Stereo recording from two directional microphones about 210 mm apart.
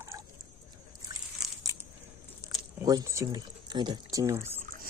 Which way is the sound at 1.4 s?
Centre (ahead or behind).